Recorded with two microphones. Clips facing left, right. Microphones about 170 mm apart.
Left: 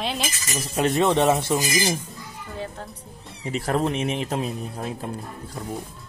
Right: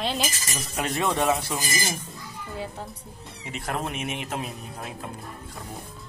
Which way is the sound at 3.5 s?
35° left (ahead or behind).